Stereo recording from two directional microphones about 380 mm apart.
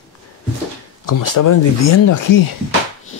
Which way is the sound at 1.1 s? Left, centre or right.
Left.